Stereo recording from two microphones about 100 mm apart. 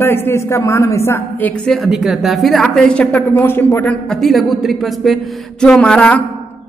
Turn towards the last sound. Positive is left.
turn(degrees=10)  # may be behind; listen again after turning